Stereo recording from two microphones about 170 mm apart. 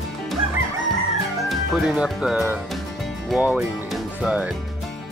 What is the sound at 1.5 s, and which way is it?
Speech, centre (ahead or behind).